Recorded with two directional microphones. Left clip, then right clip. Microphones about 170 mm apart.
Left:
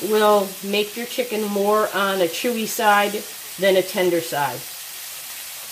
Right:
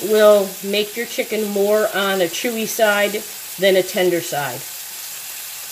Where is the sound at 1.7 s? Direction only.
25° left (ahead or behind).